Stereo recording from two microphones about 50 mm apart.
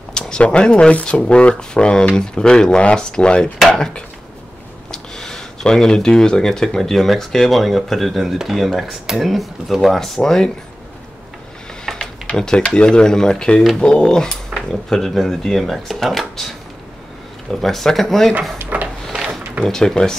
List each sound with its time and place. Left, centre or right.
0.1 s speech: centre
3.5 s speech: centre
4.9 s speech: centre
11.8 s a sound: centre
12.4 s speech: centre
17.5 s speech: centre
18.7 s a sound: right
19.6 s speech: centre